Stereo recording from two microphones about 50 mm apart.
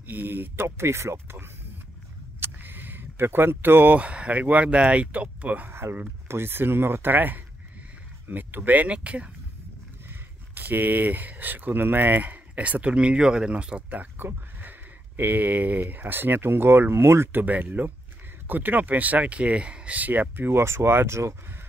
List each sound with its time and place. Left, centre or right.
0.0 s speech: right
0.7 s speech: right
2.4 s a sound: right
4.0 s speech: right
5.7 s speech: right
10.5 s speech: right
13.8 s speech: right
17.3 s speech: right
20.6 s speech: right